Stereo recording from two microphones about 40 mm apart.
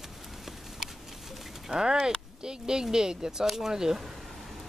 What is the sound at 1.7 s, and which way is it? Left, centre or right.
Speech, centre.